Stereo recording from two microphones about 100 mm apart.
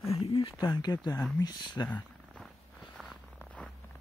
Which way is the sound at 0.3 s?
65° left (ahead or behind).